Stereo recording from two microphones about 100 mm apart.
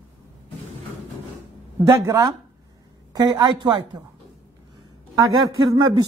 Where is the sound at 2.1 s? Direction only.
35° right (ahead or behind).